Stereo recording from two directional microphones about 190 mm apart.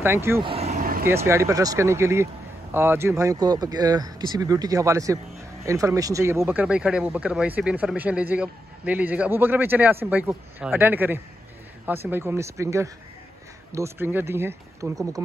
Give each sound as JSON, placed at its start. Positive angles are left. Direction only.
{"t": 0.0, "sound": "speech", "side_deg": -15}
{"t": 0.4, "sound": "speech", "side_deg": -30}
{"t": 0.7, "sound": "vehicle", "side_deg": -45}
{"t": 1.0, "sound": "speech", "side_deg": -15}